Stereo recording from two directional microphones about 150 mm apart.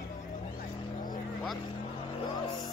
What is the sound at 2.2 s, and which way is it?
Music, 25° left (ahead or behind).